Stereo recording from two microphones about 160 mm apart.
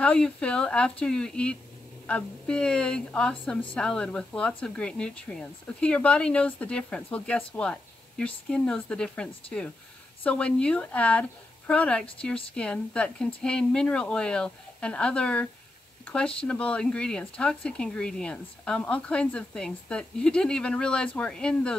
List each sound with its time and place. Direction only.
0.0 s a woman's voice: 5° left (ahead or behind)